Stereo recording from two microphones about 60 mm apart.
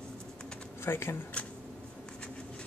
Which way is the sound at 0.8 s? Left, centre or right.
Left.